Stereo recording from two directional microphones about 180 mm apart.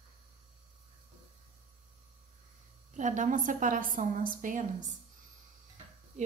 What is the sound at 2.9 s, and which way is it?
A woman's voice, 45° right (ahead or behind).